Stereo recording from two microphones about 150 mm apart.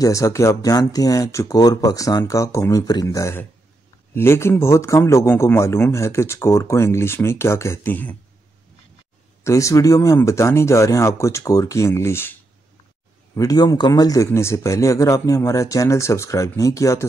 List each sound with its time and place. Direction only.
0.0 s speech: 20° left (ahead or behind)
9.4 s speech: 20° left (ahead or behind)